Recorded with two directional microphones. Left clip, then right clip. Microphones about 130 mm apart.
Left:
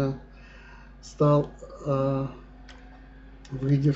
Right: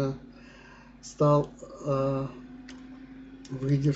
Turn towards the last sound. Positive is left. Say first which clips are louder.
# left 2 dB
turn(degrees=-5)  # may be behind; listen again after turning